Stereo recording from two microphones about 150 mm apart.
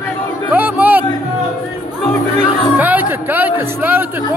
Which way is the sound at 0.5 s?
10° right (ahead or behind).